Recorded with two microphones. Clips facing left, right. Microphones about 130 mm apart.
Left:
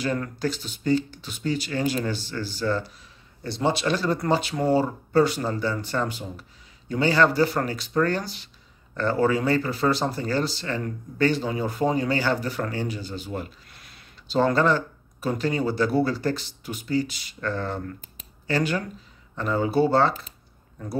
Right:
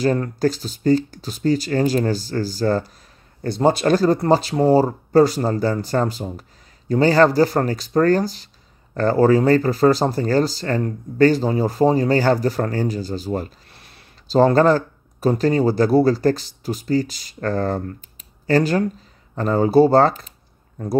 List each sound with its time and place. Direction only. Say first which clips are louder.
0.0 s speech: right 8 dB; 40° right (ahead or behind)